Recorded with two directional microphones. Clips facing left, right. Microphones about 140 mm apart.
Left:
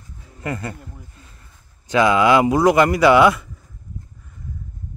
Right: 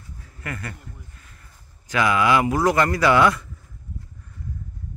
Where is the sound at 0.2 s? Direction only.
25° left (ahead or behind).